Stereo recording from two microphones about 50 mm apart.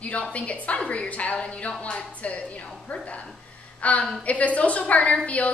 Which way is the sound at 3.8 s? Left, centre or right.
Left.